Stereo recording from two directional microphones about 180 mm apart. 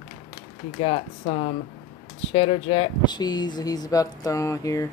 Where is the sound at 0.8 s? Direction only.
30° left (ahead or behind).